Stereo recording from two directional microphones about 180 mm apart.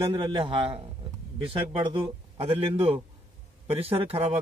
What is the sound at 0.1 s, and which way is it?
Speech, 30° right (ahead or behind).